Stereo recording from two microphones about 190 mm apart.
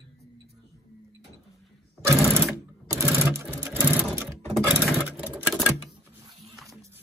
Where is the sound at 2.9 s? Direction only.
15° right (ahead or behind).